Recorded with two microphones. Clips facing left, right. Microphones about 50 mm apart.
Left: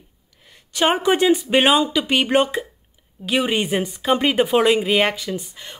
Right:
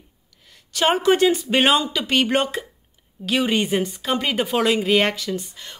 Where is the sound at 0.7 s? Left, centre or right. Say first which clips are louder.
Even; centre.